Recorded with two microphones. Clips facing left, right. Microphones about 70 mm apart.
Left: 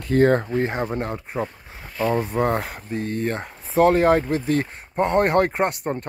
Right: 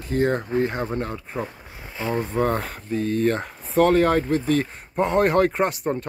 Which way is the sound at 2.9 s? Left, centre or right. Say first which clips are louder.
Right 3 dB; left.